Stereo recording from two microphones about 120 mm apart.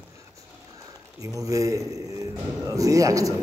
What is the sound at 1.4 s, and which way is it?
A man's voice, 30° right (ahead or behind).